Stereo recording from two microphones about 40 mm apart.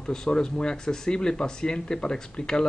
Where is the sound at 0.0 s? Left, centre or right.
Centre.